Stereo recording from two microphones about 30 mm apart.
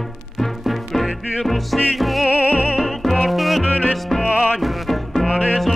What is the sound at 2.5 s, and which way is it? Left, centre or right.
Music, right.